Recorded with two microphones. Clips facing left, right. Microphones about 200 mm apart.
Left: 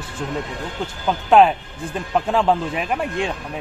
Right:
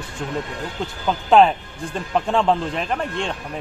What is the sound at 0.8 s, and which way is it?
Speech, 5° left (ahead or behind).